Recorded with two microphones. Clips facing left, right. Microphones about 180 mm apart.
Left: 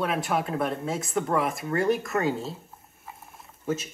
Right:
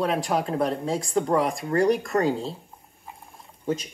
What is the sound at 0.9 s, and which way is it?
Stir, 5° left (ahead or behind).